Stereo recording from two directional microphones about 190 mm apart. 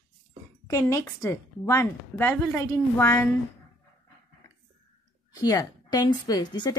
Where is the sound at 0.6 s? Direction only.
15° left (ahead or behind).